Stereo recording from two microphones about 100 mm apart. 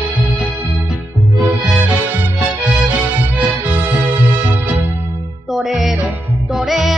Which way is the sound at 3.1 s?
20° right (ahead or behind).